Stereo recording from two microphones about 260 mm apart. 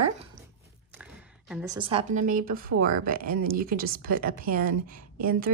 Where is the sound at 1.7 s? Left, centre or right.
Right.